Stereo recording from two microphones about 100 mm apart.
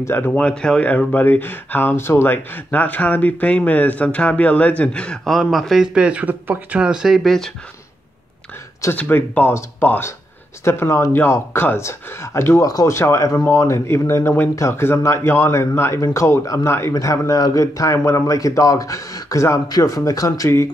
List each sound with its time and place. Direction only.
0.0 s speech: 20° left (ahead or behind); by 7.5 s centre (ahead or behind)
8.9 s speech: 15° left (ahead or behind); by 20.6 s 30° left (ahead or behind)